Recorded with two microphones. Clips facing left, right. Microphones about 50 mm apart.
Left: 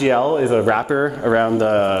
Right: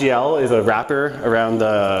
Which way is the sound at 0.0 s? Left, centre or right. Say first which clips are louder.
Even; centre.